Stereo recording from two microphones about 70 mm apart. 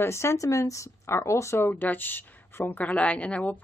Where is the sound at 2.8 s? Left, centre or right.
Centre.